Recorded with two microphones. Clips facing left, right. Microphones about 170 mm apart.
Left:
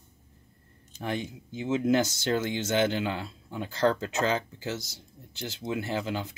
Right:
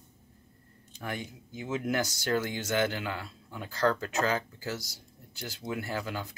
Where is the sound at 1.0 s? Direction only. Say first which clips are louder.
Left 5 dB; 25° left (ahead or behind).